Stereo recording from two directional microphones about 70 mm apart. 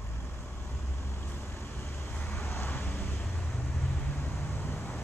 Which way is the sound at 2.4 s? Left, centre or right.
Left.